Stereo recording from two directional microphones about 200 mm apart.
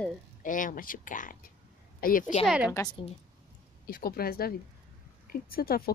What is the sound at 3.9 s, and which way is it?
A woman's voice, 50° left (ahead or behind).